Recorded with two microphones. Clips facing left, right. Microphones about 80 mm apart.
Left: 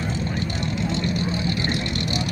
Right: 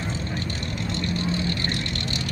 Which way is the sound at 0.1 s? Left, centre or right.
Centre.